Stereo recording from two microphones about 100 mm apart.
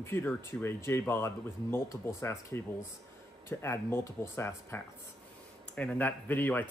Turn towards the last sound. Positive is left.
turn(degrees=20)  # may be behind; listen again after turning